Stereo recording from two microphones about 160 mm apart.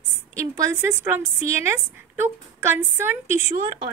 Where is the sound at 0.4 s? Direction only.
20° right (ahead or behind).